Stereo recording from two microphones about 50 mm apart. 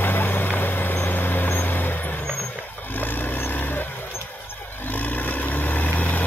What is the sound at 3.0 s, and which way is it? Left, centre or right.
Wild animals, left.